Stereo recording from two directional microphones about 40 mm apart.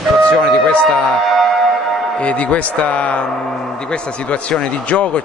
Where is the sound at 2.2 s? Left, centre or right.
Left.